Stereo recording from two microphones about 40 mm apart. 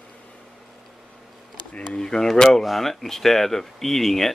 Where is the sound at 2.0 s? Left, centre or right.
Centre.